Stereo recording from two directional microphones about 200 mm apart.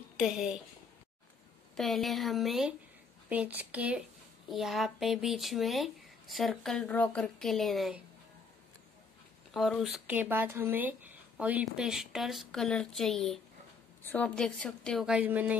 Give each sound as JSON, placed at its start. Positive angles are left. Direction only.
{"t": 0.2, "sound": "speech", "side_deg": -5}
{"t": 1.8, "sound": "speech", "side_deg": 0}
{"t": 9.5, "sound": "speech", "side_deg": 0}